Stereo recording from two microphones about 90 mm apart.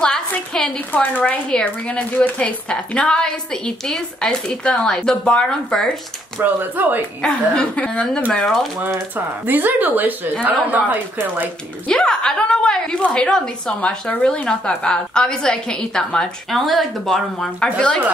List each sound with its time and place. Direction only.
0.5 s a woman's voice: 15° left (ahead or behind)
6.4 s speech: 20° right (ahead or behind)
7.2 s a woman's voice: 10° left (ahead or behind)
9.1 s speech: 20° right (ahead or behind)
11.9 s a woman's voice: 10° left (ahead or behind)